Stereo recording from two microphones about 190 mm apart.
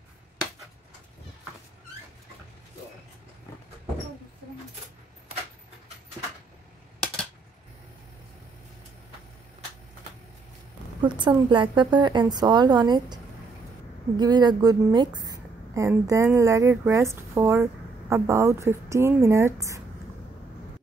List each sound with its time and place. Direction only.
11.0 s a woman's voice: 25° right (ahead or behind)